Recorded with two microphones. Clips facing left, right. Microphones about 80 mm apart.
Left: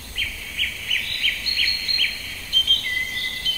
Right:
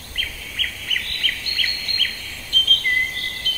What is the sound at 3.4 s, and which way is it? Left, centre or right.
Rail transport, right.